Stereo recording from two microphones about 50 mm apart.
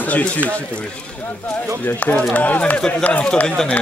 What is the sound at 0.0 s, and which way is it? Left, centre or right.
Speech, left.